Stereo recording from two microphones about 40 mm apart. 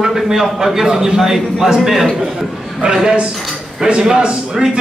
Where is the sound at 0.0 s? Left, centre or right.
Centre.